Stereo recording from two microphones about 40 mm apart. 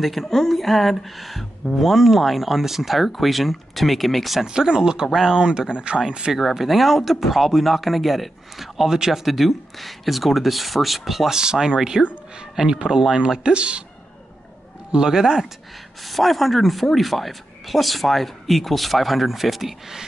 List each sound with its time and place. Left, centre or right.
0.0 s speech: centre
4.5 s speech: centre
5.4 s speech: right
6.3 s speech: centre; by 13.8 s right
14.9 s speech: centre
16.1 s speech: centre